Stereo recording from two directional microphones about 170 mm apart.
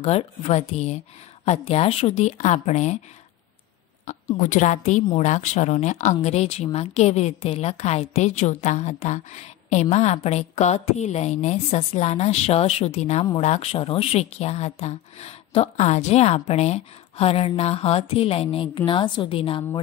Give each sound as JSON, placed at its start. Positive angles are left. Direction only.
{"t": 0.0, "sound": "a woman's voice", "side_deg": 40}
{"t": 4.0, "sound": "a woman's voice", "side_deg": 45}